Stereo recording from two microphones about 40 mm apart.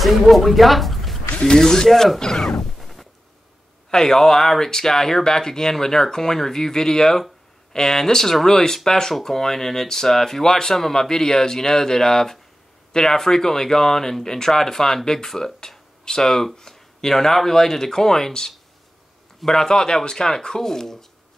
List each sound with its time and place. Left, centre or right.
0.0 s speech: centre
1.4 s speech: centre
1.9 s speech: centre
2.1 s music: centre
3.9 s speech: centre